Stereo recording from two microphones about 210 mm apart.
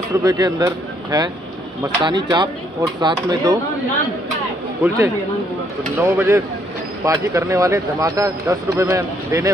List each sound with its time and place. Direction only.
0.1 s speech: 15° right (ahead or behind)
4.8 s speech: 15° right (ahead or behind)